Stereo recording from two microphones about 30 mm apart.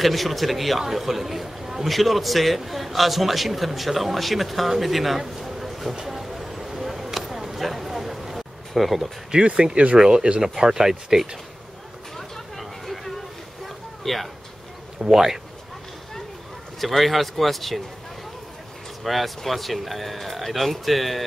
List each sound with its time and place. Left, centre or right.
0.0 s a man's voice: centre
5.2 s a sound: centre
9.4 s speech: right
9.9 s speech: right
12.2 s a sound: centre
14.0 s a man's voice: centre
15.0 s speech: centre
16.8 s a man's voice: centre
19.0 s a man's voice: centre